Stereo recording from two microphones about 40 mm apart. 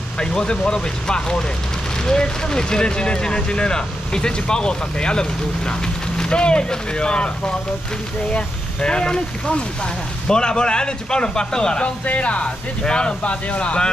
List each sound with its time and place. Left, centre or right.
0.2 s speech: centre
10.2 s speech: centre
12.1 s speech: left